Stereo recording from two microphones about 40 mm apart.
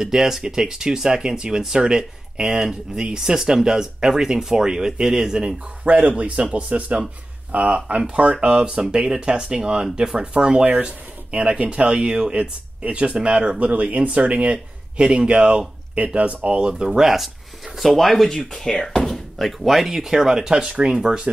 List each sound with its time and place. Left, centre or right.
0.0 s speech: centre
5.9 s speech: right
8.4 s speech: right
8.8 s speech: centre
13.6 s speech: right
16.8 s speech: centre
19.0 s speech: centre